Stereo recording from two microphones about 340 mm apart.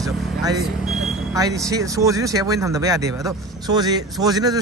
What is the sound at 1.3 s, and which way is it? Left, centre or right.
A man's voice, centre.